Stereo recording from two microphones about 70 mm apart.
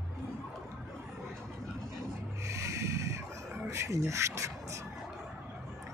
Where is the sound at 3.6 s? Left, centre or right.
Right.